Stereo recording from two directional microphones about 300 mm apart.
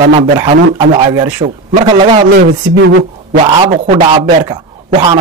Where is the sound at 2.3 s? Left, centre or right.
Right.